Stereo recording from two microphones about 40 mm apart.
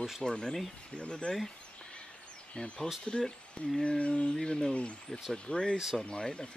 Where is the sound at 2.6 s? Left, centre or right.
Left.